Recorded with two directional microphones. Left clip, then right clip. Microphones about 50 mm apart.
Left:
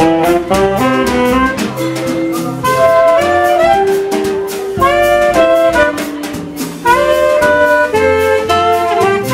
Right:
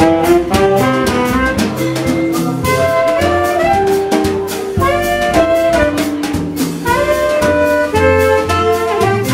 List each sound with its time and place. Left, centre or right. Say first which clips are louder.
0.0 s music: even; centre
5.1 s music: left 3 dB; centre
7.4 s music: left 3 dB; centre